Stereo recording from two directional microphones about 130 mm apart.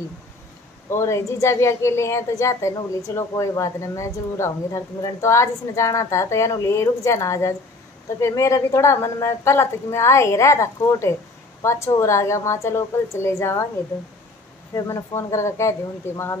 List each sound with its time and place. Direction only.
0.8 s speech: 20° left (ahead or behind)
14.7 s speech: 25° left (ahead or behind)